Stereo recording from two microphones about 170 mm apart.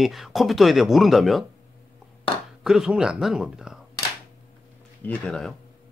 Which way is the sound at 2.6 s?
5° right (ahead or behind).